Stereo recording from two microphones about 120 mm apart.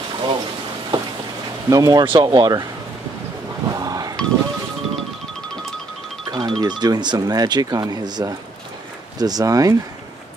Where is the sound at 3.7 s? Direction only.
30° right (ahead or behind).